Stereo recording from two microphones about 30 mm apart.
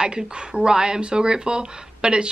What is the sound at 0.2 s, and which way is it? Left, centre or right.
Speech, right.